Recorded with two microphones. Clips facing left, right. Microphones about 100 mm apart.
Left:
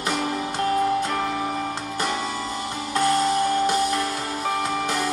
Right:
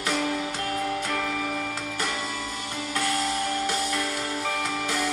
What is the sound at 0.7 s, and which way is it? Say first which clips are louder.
Music: left 5 dB; 30° left (ahead or behind).